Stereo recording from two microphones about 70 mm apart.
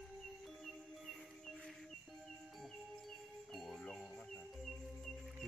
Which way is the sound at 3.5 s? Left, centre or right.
Centre.